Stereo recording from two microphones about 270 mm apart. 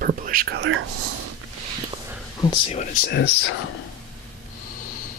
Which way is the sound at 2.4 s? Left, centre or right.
Centre.